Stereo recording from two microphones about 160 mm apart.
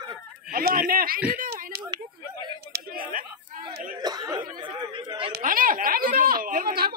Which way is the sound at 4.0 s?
25° right (ahead or behind).